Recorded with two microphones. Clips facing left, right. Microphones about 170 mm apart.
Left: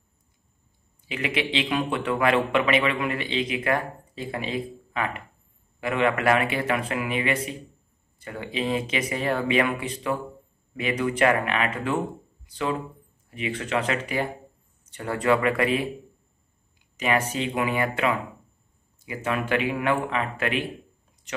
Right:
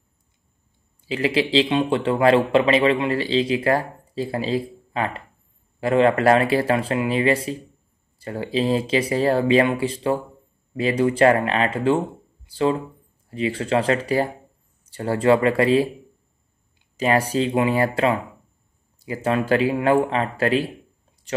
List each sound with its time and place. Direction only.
1.0 s a man's voice: 30° right (ahead or behind)